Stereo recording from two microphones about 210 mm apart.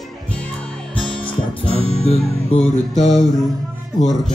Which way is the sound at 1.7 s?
30° left (ahead or behind).